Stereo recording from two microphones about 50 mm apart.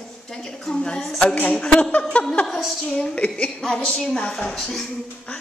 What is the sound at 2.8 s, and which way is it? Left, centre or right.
Speech, centre.